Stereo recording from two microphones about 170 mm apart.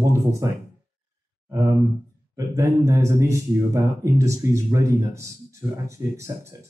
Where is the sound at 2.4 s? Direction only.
20° right (ahead or behind).